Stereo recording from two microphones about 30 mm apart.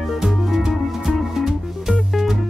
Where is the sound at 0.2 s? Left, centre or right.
Centre.